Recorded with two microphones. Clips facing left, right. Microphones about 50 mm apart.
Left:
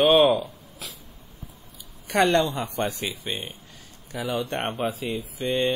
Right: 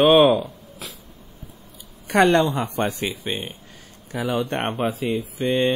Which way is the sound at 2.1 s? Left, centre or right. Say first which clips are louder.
Right 4 dB; right.